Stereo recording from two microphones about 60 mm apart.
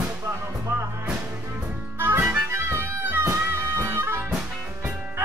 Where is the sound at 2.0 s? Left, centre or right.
Right.